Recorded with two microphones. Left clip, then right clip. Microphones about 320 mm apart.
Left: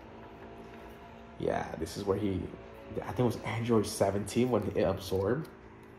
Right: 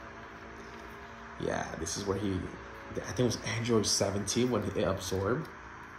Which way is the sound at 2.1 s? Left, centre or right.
Centre.